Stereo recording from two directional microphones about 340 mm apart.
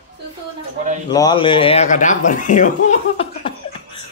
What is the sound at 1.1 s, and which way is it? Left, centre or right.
Speech, centre.